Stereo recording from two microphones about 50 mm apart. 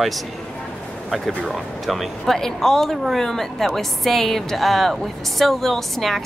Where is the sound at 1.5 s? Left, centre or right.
Centre.